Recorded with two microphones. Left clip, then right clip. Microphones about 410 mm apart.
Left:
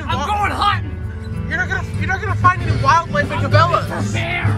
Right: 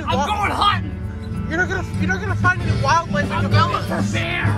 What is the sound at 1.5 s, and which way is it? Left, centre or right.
Speech, centre.